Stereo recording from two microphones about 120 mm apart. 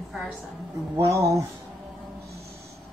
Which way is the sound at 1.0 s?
25° right (ahead or behind).